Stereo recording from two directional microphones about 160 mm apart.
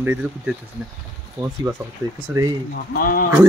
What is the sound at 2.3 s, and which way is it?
Speech, 15° right (ahead or behind).